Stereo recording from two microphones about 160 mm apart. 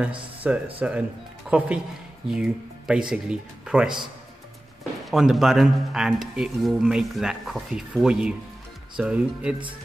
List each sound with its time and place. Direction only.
0.4 s speech: 10° right (ahead or behind)
5.1 s speech: centre (ahead or behind)